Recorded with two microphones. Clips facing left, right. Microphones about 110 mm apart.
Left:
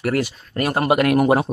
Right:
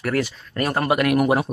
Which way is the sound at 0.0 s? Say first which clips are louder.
Left 2 dB; 15° left (ahead or behind).